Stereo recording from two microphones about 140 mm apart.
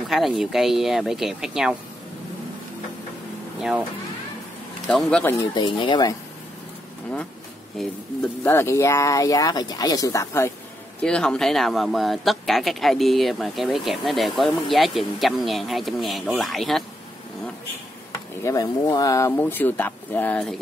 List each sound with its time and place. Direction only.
0.1 s speech: centre (ahead or behind)
3.5 s speech: 5° right (ahead or behind)
4.8 s speech: 5° left (ahead or behind)
5.8 s speech: 30° left (ahead or behind)
7.8 s speech: centre (ahead or behind)
8.5 s speech: 15° left (ahead or behind)
11.0 s speech: 5° left (ahead or behind)
18.1 s speech: 25° left (ahead or behind)